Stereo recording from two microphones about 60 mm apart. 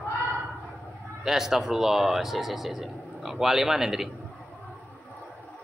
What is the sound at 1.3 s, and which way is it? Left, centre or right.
Speech, centre.